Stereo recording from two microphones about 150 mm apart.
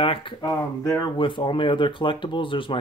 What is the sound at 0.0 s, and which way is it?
Speech, 40° left (ahead or behind).